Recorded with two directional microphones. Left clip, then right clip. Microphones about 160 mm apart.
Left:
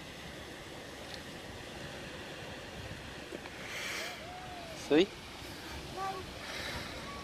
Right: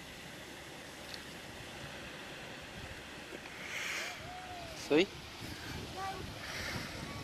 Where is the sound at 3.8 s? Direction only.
10° left (ahead or behind).